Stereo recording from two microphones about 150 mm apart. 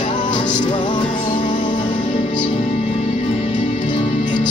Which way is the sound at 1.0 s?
55° left (ahead or behind).